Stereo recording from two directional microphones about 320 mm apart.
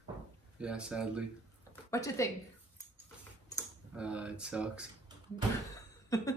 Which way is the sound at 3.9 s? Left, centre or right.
Centre.